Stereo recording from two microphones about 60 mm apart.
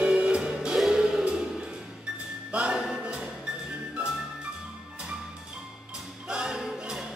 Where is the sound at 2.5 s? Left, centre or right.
Centre.